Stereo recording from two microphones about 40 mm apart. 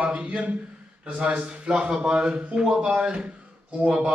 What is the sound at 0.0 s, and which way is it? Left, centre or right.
A man's voice, right.